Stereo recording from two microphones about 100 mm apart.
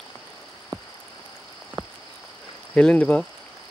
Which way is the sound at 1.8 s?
50° right (ahead or behind).